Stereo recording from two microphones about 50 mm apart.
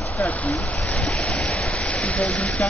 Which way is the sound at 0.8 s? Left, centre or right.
Left.